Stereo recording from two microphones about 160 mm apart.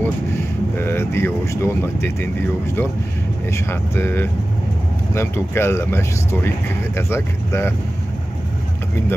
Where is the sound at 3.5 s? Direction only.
15° left (ahead or behind).